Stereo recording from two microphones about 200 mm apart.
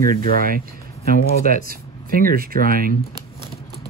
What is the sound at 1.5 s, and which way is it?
Speech, 45° right (ahead or behind).